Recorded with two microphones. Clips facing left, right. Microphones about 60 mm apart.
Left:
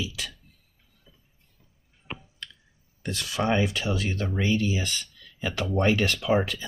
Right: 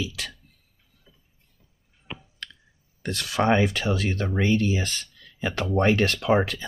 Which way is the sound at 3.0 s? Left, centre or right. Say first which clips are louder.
Right 4 dB; right.